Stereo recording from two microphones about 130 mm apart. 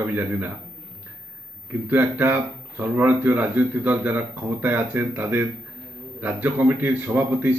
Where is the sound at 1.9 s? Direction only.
15° right (ahead or behind).